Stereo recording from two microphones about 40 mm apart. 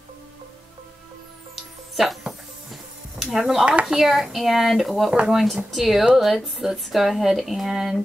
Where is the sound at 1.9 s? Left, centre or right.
Centre.